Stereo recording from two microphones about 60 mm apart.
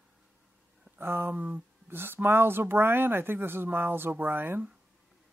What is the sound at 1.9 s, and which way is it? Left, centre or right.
Speech, right.